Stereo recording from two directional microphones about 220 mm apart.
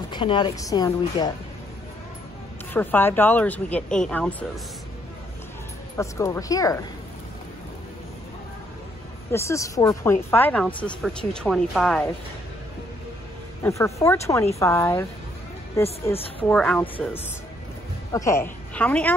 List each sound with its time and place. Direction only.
0.1 s speech: 20° left (ahead or behind)
2.7 s speech: 10° left (ahead or behind)
5.9 s speech: 15° left (ahead or behind)
9.3 s speech: 15° left (ahead or behind)
13.6 s speech: 15° left (ahead or behind)
18.1 s speech: 15° left (ahead or behind)